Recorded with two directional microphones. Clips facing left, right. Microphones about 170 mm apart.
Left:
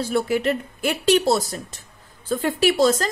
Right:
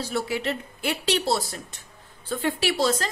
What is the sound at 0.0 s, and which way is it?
A woman's voice, 50° left (ahead or behind).